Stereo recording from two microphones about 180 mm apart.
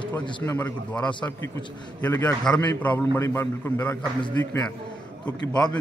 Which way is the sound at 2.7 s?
10° left (ahead or behind).